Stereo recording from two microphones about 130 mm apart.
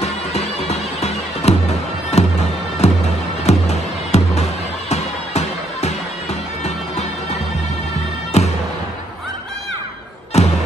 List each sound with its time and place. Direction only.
0.0 s music: 55° left (ahead or behind)
8.3 s music: 60° left (ahead or behind)
10.3 s a sound: 55° left (ahead or behind)